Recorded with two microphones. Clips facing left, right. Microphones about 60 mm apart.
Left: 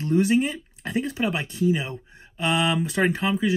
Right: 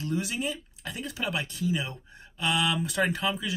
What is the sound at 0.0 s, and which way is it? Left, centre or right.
Speech, left.